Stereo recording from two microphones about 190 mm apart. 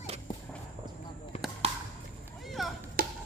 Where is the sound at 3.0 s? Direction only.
50° right (ahead or behind).